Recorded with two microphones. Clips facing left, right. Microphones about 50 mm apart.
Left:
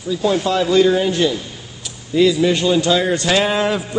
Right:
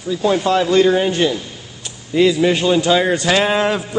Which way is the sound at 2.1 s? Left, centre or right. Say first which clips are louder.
Even; centre.